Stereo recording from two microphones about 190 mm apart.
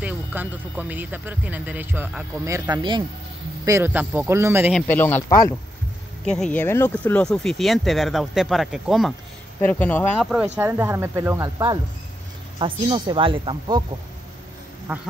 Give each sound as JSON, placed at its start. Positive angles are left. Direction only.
{"t": 0.0, "sound": "speech", "side_deg": -10}
{"t": 3.6, "sound": "speech", "side_deg": -15}
{"t": 4.7, "sound": "speech", "side_deg": 10}
{"t": 9.6, "sound": "speech", "side_deg": 10}
{"t": 10.3, "sound": "speech", "side_deg": -5}